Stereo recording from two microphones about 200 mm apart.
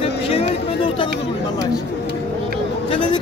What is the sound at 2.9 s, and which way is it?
Speech, 25° left (ahead or behind).